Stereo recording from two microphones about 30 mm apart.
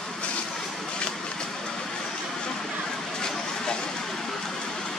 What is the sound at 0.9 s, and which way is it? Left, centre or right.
Vehicle, left.